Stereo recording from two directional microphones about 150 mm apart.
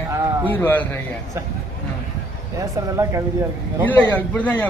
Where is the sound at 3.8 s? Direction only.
10° left (ahead or behind).